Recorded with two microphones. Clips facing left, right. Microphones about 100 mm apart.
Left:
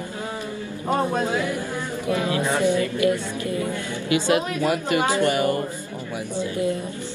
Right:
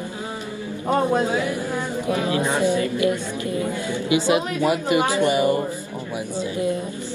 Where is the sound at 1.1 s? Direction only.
15° right (ahead or behind).